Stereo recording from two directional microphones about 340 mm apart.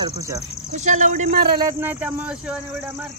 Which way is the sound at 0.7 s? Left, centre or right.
Right.